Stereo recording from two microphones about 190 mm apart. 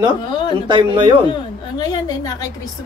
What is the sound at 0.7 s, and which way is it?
Speech, 25° right (ahead or behind).